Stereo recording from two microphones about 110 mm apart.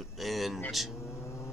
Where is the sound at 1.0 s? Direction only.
20° left (ahead or behind).